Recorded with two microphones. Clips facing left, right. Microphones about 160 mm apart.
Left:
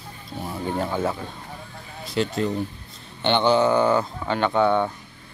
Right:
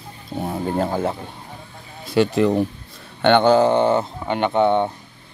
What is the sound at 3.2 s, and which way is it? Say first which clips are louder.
Mantra: right 5 dB; 50° right (ahead or behind).